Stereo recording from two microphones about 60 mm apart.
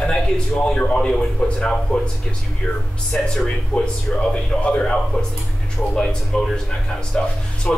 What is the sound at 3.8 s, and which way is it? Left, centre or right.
A man's voice, centre.